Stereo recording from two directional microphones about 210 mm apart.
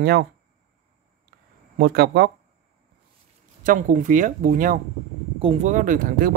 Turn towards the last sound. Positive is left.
turn(degrees=-40)  # may be behind; listen again after turning